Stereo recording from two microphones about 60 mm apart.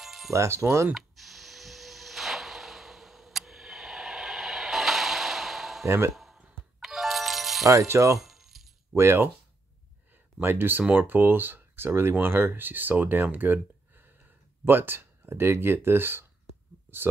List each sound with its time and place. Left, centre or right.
0.0 s music: centre
0.3 s speech: right
0.9 s a sound: centre
5.9 s speech: right
6.1 s a sound: centre
6.8 s music: centre
7.6 s speech: right
8.2 s keys jangling: centre
8.9 s speech: right
10.4 s speech: right